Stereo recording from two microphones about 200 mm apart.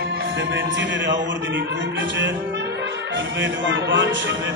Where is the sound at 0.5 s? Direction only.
65° right (ahead or behind).